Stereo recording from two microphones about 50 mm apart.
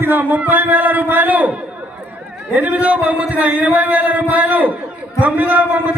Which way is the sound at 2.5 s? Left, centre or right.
Right.